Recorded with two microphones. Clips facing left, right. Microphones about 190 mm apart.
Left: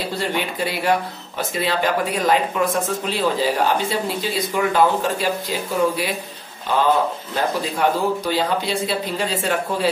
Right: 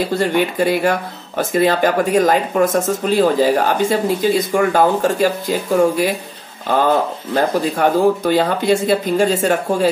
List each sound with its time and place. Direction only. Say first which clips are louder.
0.2 s speech: right 6 dB; 50° right (ahead or behind)
7.3 s speech: right 6 dB; 50° right (ahead or behind)